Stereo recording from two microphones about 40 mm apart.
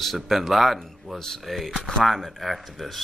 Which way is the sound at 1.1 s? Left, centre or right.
Centre.